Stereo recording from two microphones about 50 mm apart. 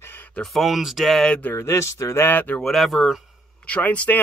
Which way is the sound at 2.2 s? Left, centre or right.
Left.